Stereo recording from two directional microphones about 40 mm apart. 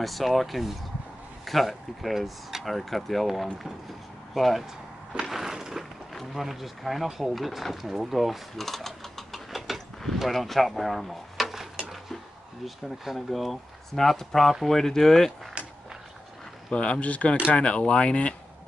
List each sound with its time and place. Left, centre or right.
0.0 s speech: centre
5.3 s a sound: centre
6.3 s speech: centre
12.6 s speech: centre
16.7 s speech: left